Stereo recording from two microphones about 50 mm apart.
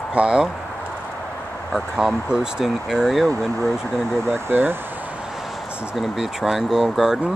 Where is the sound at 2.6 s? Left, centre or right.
Centre.